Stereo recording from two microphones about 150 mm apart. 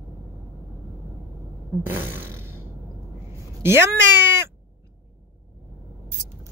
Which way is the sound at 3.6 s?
15° right (ahead or behind).